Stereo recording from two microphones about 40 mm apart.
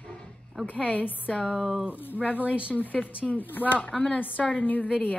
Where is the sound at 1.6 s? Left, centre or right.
Centre.